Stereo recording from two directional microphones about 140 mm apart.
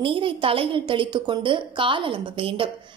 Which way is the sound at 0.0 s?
40° right (ahead or behind).